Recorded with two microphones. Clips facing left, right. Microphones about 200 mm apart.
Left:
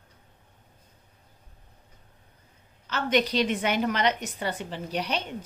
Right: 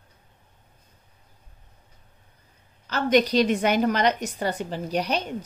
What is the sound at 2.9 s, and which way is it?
A woman's voice, 40° right (ahead or behind).